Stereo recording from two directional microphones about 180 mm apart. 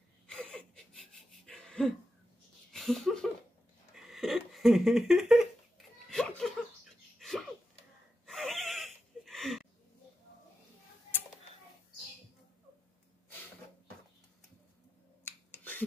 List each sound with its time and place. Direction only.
0.3 s whimper: 5° left (ahead or behind)
1.1 s a sound: 5° left (ahead or behind)
8.3 s gasp: centre (ahead or behind)
15.2 s finger snapping: 10° left (ahead or behind)